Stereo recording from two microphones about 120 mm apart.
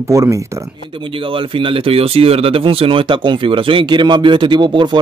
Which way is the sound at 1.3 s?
45° right (ahead or behind).